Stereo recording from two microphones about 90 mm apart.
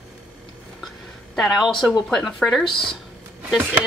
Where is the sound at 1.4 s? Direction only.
Centre (ahead or behind).